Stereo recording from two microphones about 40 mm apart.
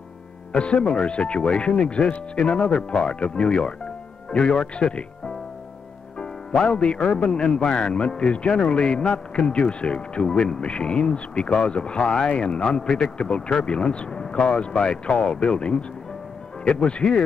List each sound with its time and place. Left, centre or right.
0.5 s a man's voice: left